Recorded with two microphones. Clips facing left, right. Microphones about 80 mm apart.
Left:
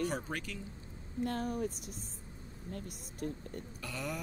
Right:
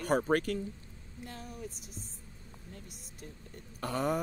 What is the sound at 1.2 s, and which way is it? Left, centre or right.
Speech, left.